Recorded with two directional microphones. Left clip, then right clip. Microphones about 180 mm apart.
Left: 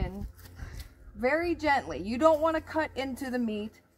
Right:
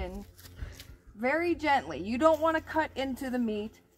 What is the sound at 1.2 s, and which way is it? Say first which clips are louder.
A woman's voice: left 1 dB; 15° left (ahead or behind).